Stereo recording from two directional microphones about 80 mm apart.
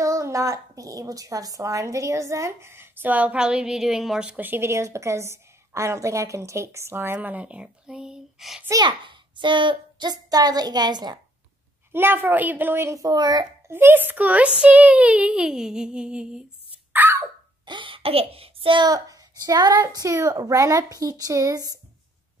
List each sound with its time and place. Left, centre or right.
0.0 s a woman's voice: right; by 4.4 s centre
4.4 s a woman's voice: right; by 8.6 s centre
8.8 s a child's voice: right
11.9 s a woman's voice: right
12.9 s a child's voice: right
13.7 s speech: right; by 16.4 s centre
16.9 s a sound: right
17.6 s a sound: right
18.9 s speech: right